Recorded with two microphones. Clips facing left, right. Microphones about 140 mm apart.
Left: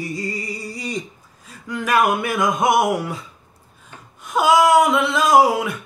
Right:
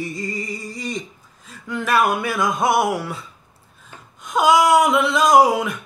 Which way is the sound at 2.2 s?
20° left (ahead or behind).